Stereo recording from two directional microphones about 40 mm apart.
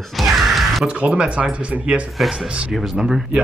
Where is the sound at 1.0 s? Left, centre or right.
Right.